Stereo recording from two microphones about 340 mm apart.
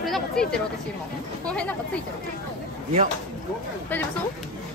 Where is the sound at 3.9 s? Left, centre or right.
Centre.